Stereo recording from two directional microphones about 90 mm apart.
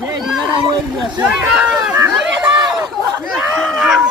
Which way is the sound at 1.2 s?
10° right (ahead or behind).